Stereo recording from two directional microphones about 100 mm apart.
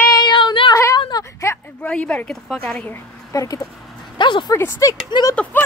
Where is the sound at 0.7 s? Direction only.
35° left (ahead or behind).